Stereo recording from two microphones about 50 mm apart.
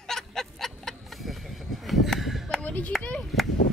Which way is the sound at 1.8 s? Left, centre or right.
Centre.